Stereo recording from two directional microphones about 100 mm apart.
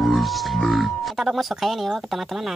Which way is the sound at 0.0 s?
Centre (ahead or behind).